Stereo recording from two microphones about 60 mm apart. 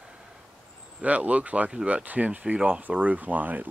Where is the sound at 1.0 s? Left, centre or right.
Right.